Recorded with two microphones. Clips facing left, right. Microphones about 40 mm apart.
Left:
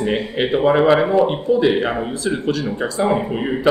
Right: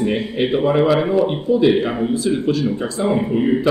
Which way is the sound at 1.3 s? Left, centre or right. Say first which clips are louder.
Right 1 dB; centre.